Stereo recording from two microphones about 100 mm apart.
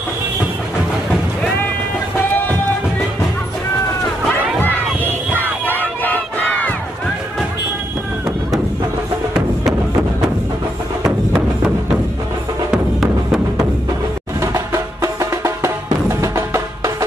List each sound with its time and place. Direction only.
4.6 s crowd: 20° left (ahead or behind)
5.7 s battle cry: 15° left (ahead or behind)
12.7 s music: 5° right (ahead or behind)
14.4 s music: 30° right (ahead or behind)